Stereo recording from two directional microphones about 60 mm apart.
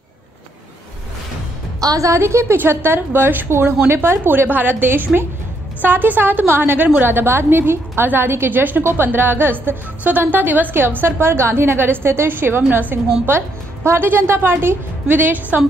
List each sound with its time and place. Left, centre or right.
1.8 s a woman's voice: right